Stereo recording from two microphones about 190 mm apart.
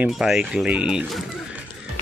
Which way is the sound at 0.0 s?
5° right (ahead or behind).